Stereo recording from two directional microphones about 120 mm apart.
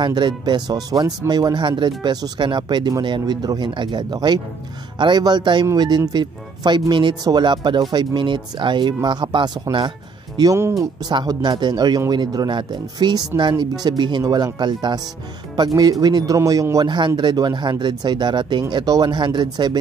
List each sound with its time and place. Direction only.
0.0 s speech: 40° right (ahead or behind)